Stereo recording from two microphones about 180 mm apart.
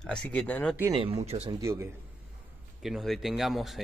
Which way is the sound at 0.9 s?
35° right (ahead or behind).